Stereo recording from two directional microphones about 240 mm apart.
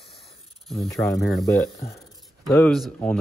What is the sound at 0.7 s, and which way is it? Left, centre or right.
Speech, centre.